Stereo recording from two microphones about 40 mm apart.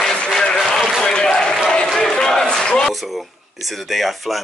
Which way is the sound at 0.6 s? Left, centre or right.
Centre.